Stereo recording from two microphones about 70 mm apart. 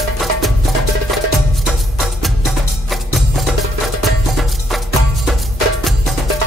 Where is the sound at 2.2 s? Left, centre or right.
Centre.